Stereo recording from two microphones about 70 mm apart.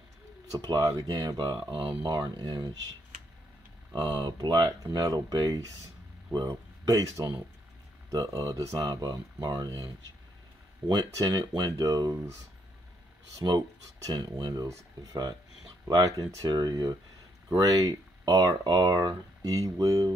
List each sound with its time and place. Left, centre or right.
0.5 s speech: right
1.9 s speech: right
3.9 s speech: right
4.6 s speech: right
10.8 s speech: centre
11.2 s speech: right
13.4 s speech: right
16.4 s speech: right
17.6 s speech: right
18.2 s speech: right